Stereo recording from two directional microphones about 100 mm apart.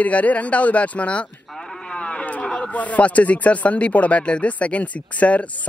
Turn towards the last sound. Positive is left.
turn(degrees=15)  # may be behind; listen again after turning